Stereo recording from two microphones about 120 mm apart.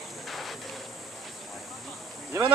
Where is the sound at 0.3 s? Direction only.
Centre (ahead or behind).